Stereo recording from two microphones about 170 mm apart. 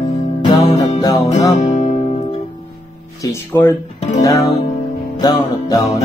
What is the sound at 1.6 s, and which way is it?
Music, 40° left (ahead or behind).